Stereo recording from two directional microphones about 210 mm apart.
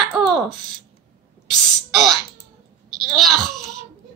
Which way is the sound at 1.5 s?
Centre (ahead or behind).